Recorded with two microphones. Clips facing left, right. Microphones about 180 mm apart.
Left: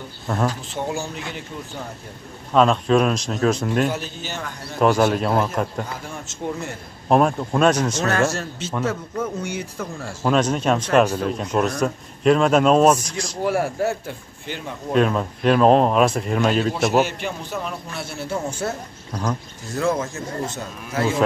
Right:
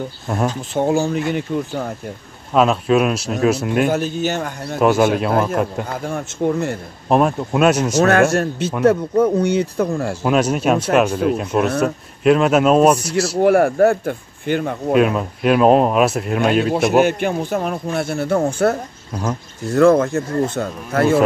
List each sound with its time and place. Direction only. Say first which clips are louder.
0.3 s speech: right 2 dB; 10° right (ahead or behind)
0.7 s a man's voice: right 10 dB; 50° right (ahead or behind)
2.5 s speech: right 2 dB; 5° right (ahead or behind)
3.9 s a man's voice: right 10 dB; 50° right (ahead or behind)
4.7 s speech: right 3 dB; 5° right (ahead or behind)
6.2 s a man's voice: right 9 dB; 55° right (ahead or behind)
7.1 s speech: right 2 dB; 5° right (ahead or behind)
8.0 s a man's voice: right 7 dB; 60° right (ahead or behind)
10.2 s speech: right 2 dB; 10° right (ahead or behind)
13.4 s a man's voice: right 9 dB; 60° right (ahead or behind)
15.0 s speech: right 2 dB; 5° right (ahead or behind)
17.0 s a man's voice: right 7 dB; 55° right (ahead or behind)